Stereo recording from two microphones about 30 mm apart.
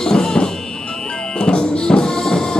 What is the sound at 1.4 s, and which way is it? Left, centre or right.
Music, left.